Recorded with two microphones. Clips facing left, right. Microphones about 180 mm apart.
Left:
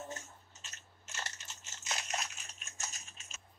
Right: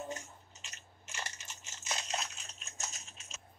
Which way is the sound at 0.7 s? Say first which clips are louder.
Right 1 dB; 15° right (ahead or behind).